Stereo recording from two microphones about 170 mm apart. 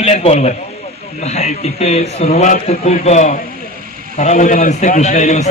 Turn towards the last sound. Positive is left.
turn(degrees=45)  # may be behind; listen again after turning